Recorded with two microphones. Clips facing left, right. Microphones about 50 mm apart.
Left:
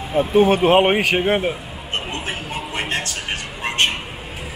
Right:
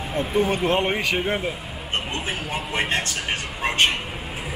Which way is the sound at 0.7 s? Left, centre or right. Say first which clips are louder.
Left 7 dB; left.